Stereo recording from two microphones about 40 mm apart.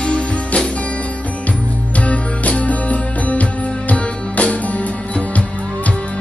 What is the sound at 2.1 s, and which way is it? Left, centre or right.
Music, left.